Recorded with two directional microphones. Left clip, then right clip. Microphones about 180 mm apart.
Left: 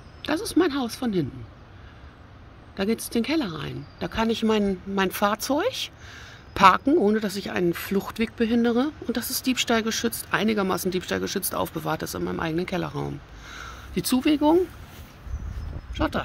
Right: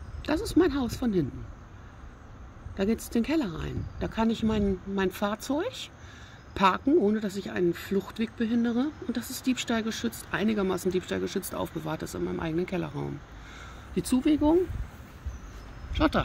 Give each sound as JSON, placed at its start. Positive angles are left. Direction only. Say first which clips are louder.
{"t": 0.6, "sound": "speech", "louder": "left 2 dB", "side_deg": 5}
{"t": 2.7, "sound": "speech", "louder": "left 3 dB", "side_deg": 5}
{"t": 15.9, "sound": "speech", "louder": "right 1 dB", "side_deg": 0}